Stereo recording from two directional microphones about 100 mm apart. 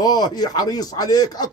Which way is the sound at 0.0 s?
40° left (ahead or behind).